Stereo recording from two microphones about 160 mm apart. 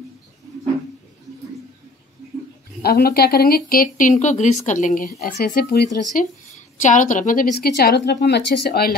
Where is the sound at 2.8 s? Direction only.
85° left; by 5.1 s 50° left (ahead or behind).